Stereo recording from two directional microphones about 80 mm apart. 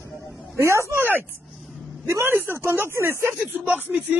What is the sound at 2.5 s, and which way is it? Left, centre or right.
Speech, right.